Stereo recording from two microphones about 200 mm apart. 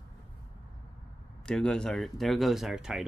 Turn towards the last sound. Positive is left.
turn(degrees=-5)  # may be behind; listen again after turning